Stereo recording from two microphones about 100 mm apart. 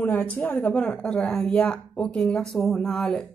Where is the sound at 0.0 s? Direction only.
15° left (ahead or behind).